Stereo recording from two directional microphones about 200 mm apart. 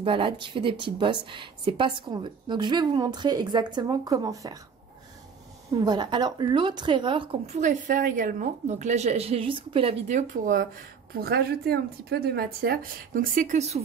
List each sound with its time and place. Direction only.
0.0 s speech: 25° right (ahead or behind)
5.9 s speech: 20° right (ahead or behind)
7.5 s a woman's voice: 40° right (ahead or behind)